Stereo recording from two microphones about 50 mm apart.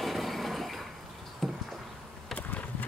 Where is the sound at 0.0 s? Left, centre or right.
Centre.